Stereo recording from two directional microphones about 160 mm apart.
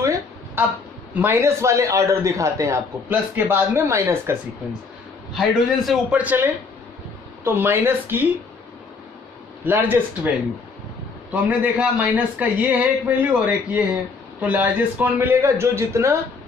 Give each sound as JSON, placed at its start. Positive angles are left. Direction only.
{"t": 0.0, "sound": "a sound", "side_deg": -20}
{"t": 1.2, "sound": "a man's voice", "side_deg": -15}
{"t": 5.9, "sound": "a man's voice", "side_deg": -5}
{"t": 9.7, "sound": "a man's voice", "side_deg": -10}
{"t": 11.4, "sound": "a man's voice", "side_deg": -10}